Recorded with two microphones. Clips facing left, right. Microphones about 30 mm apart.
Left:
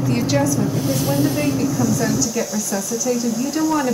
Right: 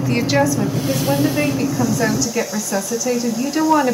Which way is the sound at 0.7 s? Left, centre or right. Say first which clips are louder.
Right 1 dB; centre.